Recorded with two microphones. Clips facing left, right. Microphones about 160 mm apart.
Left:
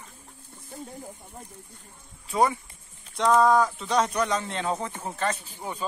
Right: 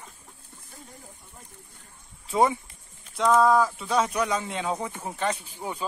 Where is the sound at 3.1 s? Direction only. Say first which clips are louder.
Even; centre (ahead or behind).